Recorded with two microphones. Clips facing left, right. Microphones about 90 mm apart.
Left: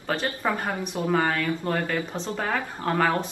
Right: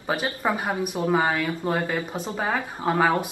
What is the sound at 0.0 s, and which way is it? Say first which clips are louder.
A woman's voice: right 1 dB; 10° right (ahead or behind).